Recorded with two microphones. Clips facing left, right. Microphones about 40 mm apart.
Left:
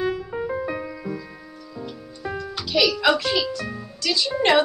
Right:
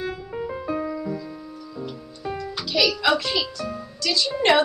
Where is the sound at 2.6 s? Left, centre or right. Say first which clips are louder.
Left 2 dB; left.